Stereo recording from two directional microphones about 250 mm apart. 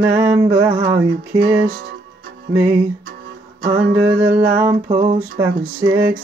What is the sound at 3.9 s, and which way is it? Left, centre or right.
Music, right.